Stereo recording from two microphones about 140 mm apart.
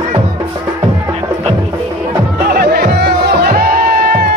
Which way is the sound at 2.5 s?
90° right.